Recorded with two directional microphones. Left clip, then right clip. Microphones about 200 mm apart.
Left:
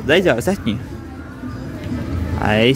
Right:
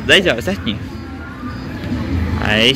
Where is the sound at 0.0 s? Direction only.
35° left (ahead or behind).